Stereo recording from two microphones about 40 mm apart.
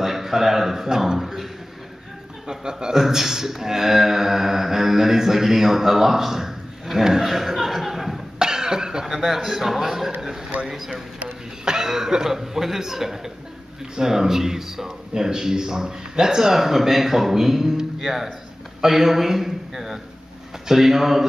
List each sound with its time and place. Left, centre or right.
0.0 s a man's voice: centre
1.2 s a man's voice: centre
2.4 s speech: centre
8.4 s cough: centre
9.0 s speech: centre
10.5 s speech: right
11.6 s a man's voice: centre